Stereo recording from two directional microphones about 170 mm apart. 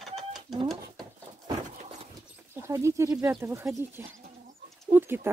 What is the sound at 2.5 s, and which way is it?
Speech, 15° right (ahead or behind).